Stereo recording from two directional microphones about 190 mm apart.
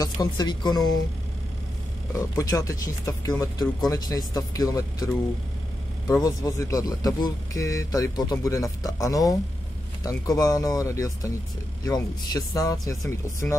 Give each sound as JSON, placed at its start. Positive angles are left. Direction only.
{"t": 0.0, "sound": "speech", "side_deg": 20}
{"t": 2.1, "sound": "speech", "side_deg": 15}
{"t": 6.2, "sound": "speech", "side_deg": 20}